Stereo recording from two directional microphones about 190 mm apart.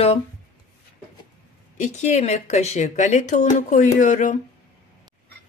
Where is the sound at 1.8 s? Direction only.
40° left (ahead or behind).